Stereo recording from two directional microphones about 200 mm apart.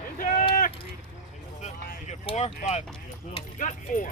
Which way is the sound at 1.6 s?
35° left (ahead or behind).